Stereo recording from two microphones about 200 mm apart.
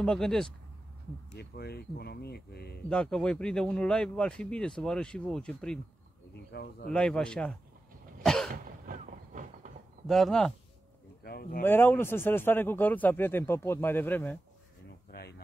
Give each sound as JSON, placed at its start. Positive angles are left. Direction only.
{"t": 0.0, "sound": "speech", "side_deg": 5}
{"t": 1.3, "sound": "speech", "side_deg": 55}
{"t": 2.9, "sound": "speech", "side_deg": 5}
{"t": 6.5, "sound": "speech", "side_deg": 50}
{"t": 6.9, "sound": "speech", "side_deg": 5}
{"t": 8.2, "sound": "cough", "side_deg": 0}
{"t": 8.8, "sound": "vehicle", "side_deg": -40}
{"t": 10.0, "sound": "speech", "side_deg": 0}
{"t": 11.2, "sound": "speech", "side_deg": 50}
{"t": 11.6, "sound": "a man's voice", "side_deg": 10}
{"t": 15.0, "sound": "a sound", "side_deg": 50}